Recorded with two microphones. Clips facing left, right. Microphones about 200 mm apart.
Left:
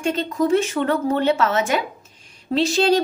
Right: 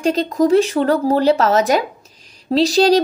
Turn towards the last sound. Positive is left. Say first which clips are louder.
# right 5 dB
turn(degrees=-35)  # may be behind; listen again after turning